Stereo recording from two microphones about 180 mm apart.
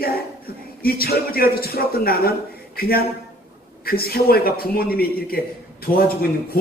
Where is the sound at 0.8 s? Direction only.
55° left (ahead or behind).